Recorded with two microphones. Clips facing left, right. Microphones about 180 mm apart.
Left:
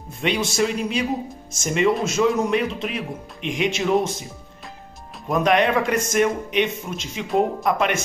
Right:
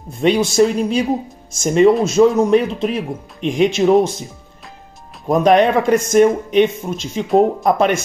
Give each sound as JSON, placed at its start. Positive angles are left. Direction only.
{"t": 0.2, "sound": "speech", "side_deg": -40}
{"t": 5.3, "sound": "speech", "side_deg": -35}